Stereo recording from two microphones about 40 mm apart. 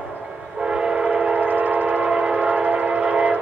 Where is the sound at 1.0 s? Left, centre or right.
Right.